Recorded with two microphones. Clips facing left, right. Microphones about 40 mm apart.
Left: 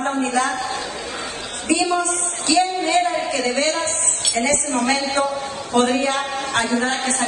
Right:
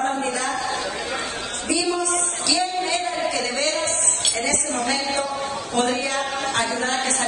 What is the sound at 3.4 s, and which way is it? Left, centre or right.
Speech, left.